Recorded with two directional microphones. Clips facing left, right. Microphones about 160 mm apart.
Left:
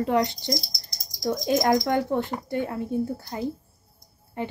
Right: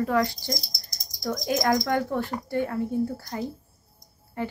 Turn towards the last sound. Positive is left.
turn(degrees=20)  # may be behind; listen again after turning